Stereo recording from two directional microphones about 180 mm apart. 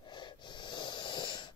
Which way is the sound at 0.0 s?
25° left (ahead or behind).